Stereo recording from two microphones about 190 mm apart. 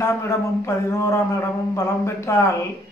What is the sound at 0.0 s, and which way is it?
A man's voice, 15° left (ahead or behind).